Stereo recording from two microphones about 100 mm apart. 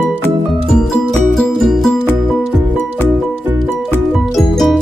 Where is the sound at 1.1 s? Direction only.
5° left (ahead or behind).